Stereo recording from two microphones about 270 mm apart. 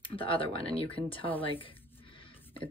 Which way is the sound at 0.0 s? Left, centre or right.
Centre.